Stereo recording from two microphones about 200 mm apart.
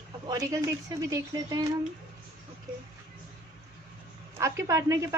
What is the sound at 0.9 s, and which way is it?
Speech, 15° right (ahead or behind).